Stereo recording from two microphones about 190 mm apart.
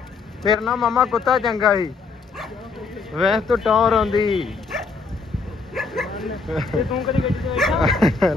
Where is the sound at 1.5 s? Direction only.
20° left (ahead or behind).